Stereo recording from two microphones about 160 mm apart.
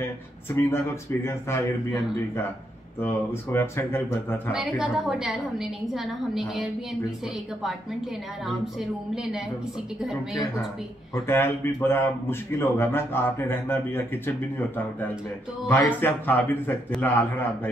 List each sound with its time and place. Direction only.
0.7 s a man's voice: 15° left (ahead or behind)
3.5 s a man's voice: 15° left (ahead or behind)
4.5 s a woman's voice: 5° right (ahead or behind)
8.5 s a woman's voice: 5° right (ahead or behind)
11.1 s a man's voice: 15° left (ahead or behind)